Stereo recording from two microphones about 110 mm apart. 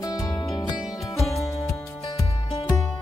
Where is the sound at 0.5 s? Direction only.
45° left (ahead or behind).